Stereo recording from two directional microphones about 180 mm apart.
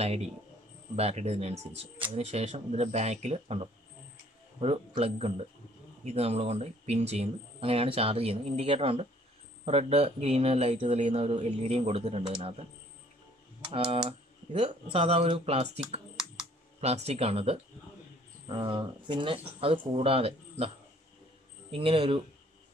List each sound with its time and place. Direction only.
0.0 s speech: 35° right (ahead or behind)
14.5 s speech: 30° right (ahead or behind)
16.3 s computer keyboard: 35° right (ahead or behind)
18.5 s speech: 30° right (ahead or behind)
21.7 s speech: 30° right (ahead or behind)